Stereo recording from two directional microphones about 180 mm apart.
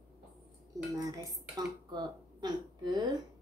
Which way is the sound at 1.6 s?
25° right (ahead or behind).